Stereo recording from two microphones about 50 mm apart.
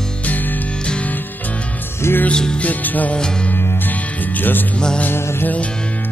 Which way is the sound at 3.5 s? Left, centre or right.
Left.